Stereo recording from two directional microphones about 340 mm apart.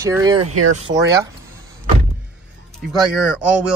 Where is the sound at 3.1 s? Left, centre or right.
Centre.